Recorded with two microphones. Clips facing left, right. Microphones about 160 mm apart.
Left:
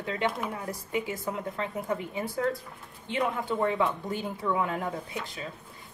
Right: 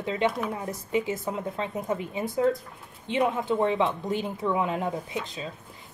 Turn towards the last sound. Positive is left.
turn(degrees=-20)  # may be behind; listen again after turning